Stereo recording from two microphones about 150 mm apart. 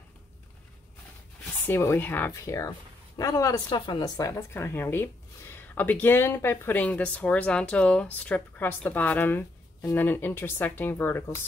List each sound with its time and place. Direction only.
1.7 s a woman's voice: 15° left (ahead or behind)